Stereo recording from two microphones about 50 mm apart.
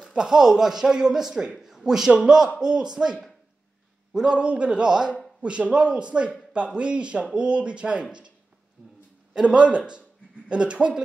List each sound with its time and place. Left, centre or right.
0.0 s speech: centre
9.3 s speech: centre